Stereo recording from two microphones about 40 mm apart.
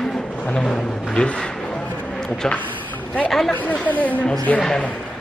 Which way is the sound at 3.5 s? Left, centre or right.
Left.